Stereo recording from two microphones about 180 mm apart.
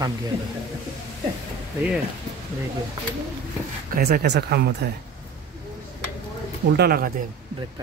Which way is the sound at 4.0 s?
60° right (ahead or behind).